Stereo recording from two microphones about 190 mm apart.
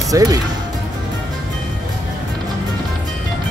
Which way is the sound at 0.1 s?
20° right (ahead or behind).